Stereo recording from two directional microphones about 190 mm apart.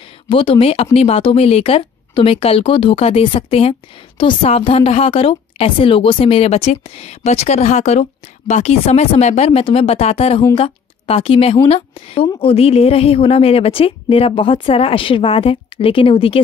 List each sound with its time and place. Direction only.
0.3 s a woman's voice: 30° left (ahead or behind)